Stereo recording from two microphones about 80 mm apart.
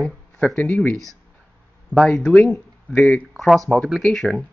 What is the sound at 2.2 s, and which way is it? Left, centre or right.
Speech, left.